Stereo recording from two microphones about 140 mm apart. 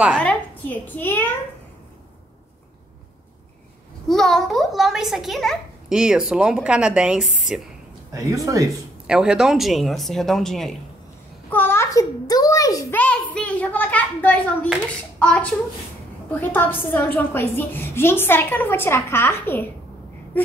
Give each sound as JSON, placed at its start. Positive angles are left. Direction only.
{"t": 0.1, "sound": "a woman's voice", "side_deg": 10}
{"t": 4.1, "sound": "a child's voice", "side_deg": 0}
{"t": 8.1, "sound": "speech", "side_deg": -20}
{"t": 9.0, "sound": "a child's voice", "side_deg": -5}
{"t": 11.5, "sound": "a child's voice", "side_deg": 15}
{"t": 12.9, "sound": "a woman's voice", "side_deg": 10}